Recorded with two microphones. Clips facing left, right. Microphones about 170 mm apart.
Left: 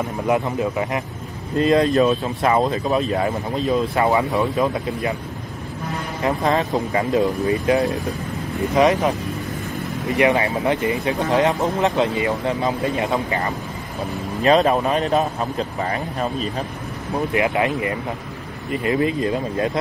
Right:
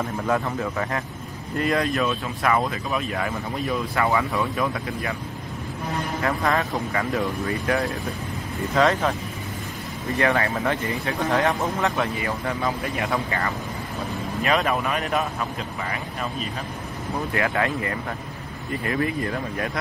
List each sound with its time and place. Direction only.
0.3 s a man's voice: 20° left (ahead or behind)
1.9 s a man's voice: 35° left (ahead or behind)
3.1 s speech: 25° left (ahead or behind)
4.6 s speech: 20° left (ahead or behind)
6.2 s a man's voice: 20° left (ahead or behind)
10.1 s speech: 15° left (ahead or behind)
14.4 s a man's voice: 35° left (ahead or behind)
17.3 s speech: 20° left (ahead or behind)